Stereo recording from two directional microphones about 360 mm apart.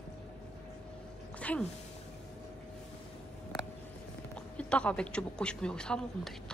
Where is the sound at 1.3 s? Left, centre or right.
Centre.